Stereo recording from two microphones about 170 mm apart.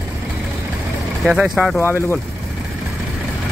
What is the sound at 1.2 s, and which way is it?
Speech, 5° right (ahead or behind).